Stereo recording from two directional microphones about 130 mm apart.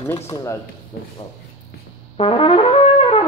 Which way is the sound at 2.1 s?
45° left (ahead or behind).